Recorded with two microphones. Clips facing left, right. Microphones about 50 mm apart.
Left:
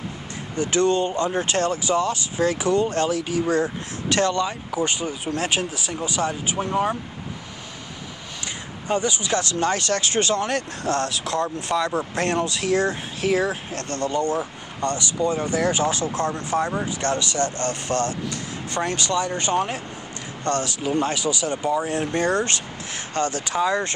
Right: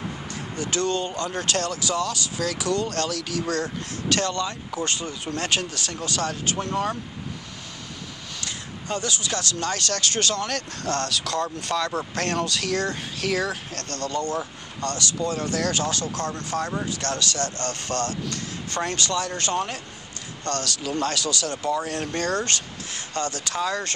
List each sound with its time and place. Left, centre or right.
0.6 s speech: left
8.8 s speech: centre